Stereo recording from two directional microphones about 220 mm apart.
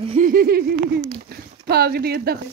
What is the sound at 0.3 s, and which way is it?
Speech, 45° right (ahead or behind).